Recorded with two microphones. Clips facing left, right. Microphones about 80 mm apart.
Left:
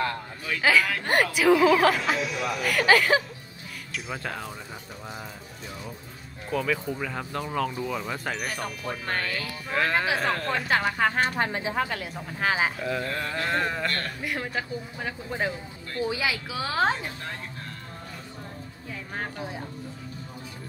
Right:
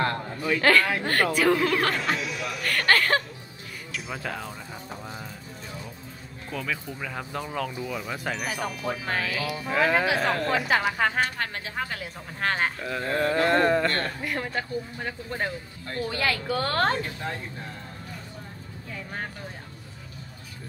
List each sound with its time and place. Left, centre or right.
0.6 s a woman's voice: centre
6.5 s speech: centre
11.2 s a woman's voice: centre
11.9 s speech: centre
13.0 s a sound: right
13.3 s speech: centre
13.8 s a sound: right
14.2 s a woman's voice: centre